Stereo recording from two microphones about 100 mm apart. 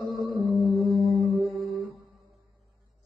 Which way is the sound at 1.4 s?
Centre (ahead or behind).